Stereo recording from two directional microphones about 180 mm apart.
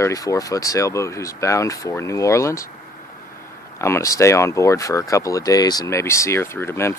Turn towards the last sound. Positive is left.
turn(degrees=15)  # may be behind; listen again after turning